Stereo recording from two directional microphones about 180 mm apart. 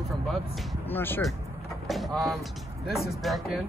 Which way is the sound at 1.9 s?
Centre (ahead or behind).